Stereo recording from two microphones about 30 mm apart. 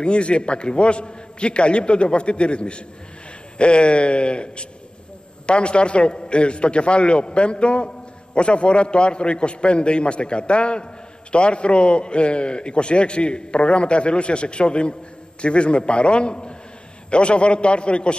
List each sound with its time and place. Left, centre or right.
0.0 s a man's voice: left